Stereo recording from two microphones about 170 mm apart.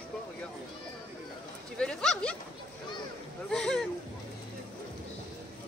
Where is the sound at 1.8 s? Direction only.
5° left (ahead or behind).